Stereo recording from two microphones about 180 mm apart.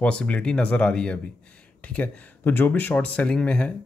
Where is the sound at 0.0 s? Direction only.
5° left (ahead or behind).